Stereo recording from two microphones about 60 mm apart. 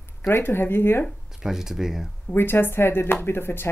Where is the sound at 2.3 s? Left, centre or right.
Left.